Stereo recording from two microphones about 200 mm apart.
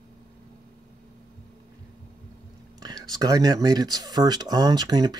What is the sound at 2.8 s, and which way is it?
Speech, 20° right (ahead or behind).